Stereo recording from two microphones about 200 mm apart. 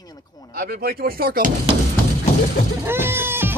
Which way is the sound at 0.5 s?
50° right (ahead or behind).